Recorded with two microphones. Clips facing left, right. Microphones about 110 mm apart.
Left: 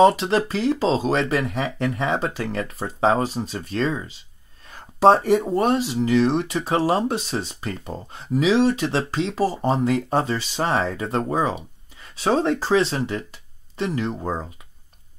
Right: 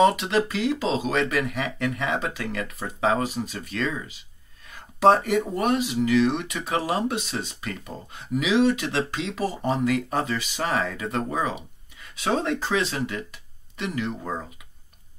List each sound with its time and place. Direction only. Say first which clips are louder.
0.0 s speech: left 4 dB; 35° left (ahead or behind)